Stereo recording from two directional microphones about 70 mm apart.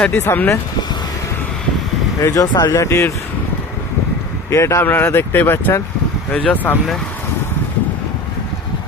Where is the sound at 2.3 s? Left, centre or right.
Left.